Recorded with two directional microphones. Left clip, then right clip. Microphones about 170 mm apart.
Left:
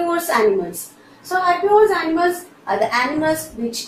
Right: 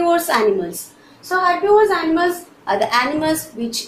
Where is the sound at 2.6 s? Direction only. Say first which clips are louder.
Right 1 dB; 20° right (ahead or behind).